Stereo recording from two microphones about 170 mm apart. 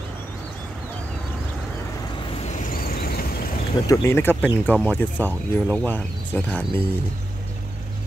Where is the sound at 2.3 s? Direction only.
40° left (ahead or behind); by 3.4 s 60° left (ahead or behind).